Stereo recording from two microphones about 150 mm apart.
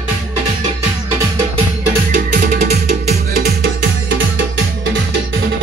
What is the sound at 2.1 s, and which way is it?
Music, 50° right (ahead or behind).